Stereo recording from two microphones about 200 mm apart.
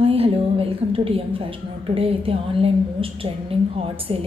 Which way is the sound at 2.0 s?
30° right (ahead or behind).